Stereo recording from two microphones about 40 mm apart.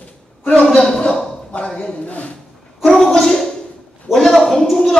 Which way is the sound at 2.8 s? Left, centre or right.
Centre.